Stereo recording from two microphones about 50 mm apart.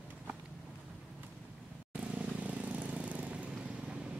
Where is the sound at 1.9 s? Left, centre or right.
Right.